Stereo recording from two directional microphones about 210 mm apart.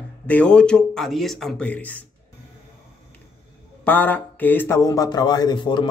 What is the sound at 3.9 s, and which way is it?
Speech, 10° left (ahead or behind).